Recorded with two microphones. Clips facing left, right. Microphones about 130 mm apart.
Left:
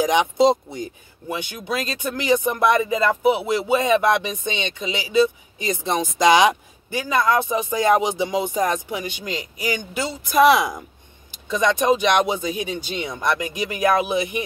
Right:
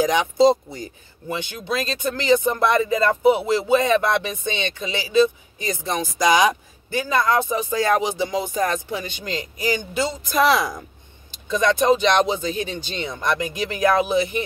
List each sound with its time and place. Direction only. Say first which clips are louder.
0.0 s speech: even; 20° left (ahead or behind)